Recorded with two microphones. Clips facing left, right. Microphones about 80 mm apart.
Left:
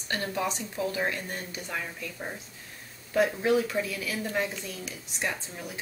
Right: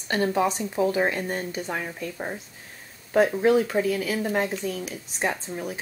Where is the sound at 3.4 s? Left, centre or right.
Right.